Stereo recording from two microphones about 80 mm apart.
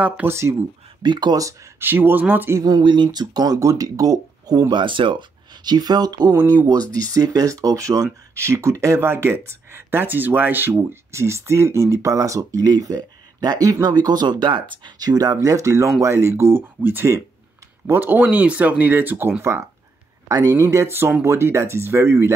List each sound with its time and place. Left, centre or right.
0.0 s speech: right
1.0 s speech: right
1.8 s speech: right
2.8 s speech: right
15.4 s speech: right
20.2 s speech: right